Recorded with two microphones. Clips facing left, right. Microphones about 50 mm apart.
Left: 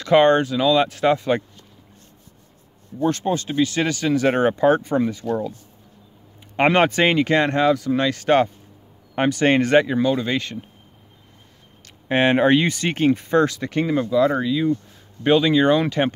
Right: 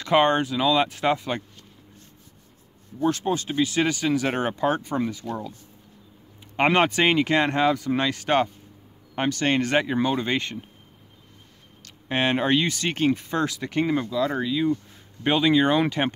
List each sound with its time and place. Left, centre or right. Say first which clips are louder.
0.0 s speech: left 5 dB; centre
3.0 s speech: left 3 dB; centre
6.5 s speech: left 3 dB; centre
9.1 s speech: left 5 dB; centre
9.7 s speech: left 6 dB; centre
9.9 s speech: left 3 dB; centre
11.8 s speech: left 6 dB; centre
13.7 s speech: left 3 dB; centre
14.1 s speech: left 7 dB; left
14.4 s speech: left 3 dB; centre